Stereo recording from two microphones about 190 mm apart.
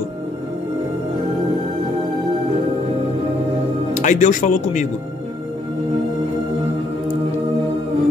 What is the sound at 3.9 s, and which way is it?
Speech, 40° left (ahead or behind).